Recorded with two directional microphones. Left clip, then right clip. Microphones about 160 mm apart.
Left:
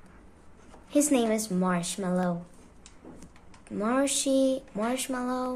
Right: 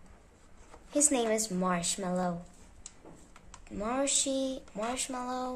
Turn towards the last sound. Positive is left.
turn(degrees=10)  # may be behind; listen again after turning